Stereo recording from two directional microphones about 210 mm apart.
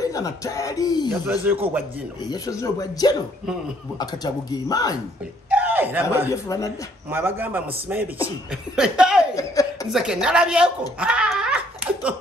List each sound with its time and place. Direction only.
0.0 s speech: 15° left (ahead or behind)
1.4 s a man's voice: 10° right (ahead or behind)
2.2 s a man's voice: 15° left (ahead or behind)
5.5 s speech: 5° right (ahead or behind)
6.3 s a man's voice: 15° left (ahead or behind)
7.1 s a man's voice: 10° right (ahead or behind)
9.3 s speech: 15° left (ahead or behind)
9.8 s a woman's voice: 5° right (ahead or behind)
11.0 s laughter: 5° right (ahead or behind)